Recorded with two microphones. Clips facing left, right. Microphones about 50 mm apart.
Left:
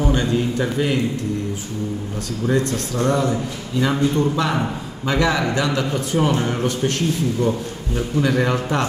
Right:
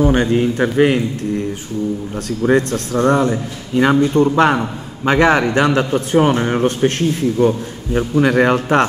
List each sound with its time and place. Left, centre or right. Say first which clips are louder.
0.0 s a man's voice: right 6 dB; right
2.4 s a man's voice: right 5 dB; right
7.3 s a man's voice: right 6 dB; right